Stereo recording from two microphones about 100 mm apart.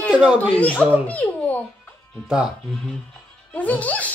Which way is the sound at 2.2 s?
5° right (ahead or behind).